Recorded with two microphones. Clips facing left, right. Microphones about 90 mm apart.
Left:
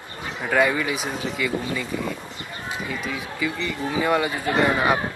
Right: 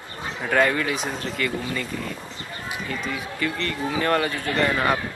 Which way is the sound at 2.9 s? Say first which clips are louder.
Even; 5° left (ahead or behind).